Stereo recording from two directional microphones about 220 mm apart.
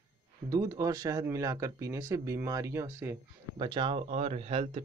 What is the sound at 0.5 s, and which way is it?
Speech, 15° right (ahead or behind).